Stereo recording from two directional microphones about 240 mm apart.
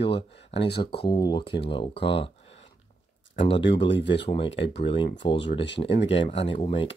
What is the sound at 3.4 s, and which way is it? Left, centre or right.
Speech, left.